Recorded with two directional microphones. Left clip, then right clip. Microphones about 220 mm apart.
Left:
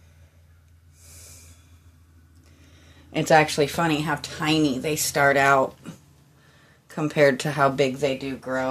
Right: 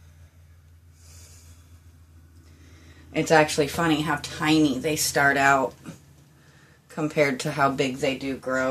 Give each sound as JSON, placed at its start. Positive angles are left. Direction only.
{"t": 3.1, "sound": "speech", "side_deg": 35}
{"t": 6.9, "sound": "speech", "side_deg": 40}